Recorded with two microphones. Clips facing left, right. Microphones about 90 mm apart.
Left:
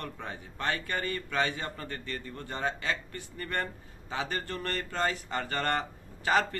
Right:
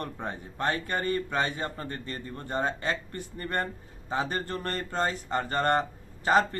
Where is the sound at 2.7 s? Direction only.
45° right (ahead or behind).